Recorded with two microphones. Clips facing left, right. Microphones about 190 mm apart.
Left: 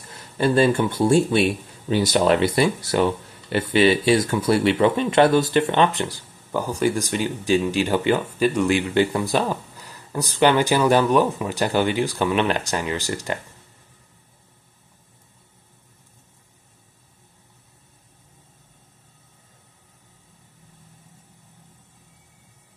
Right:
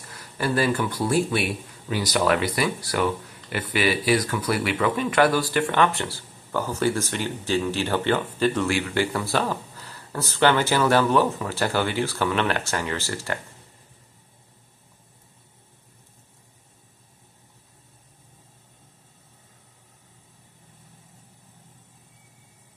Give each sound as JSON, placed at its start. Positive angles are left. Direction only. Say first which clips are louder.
{"t": 0.1, "sound": "speech", "louder": "left 6 dB", "side_deg": 25}